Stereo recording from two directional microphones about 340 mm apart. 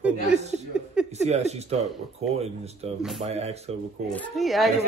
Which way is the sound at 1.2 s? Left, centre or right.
Centre.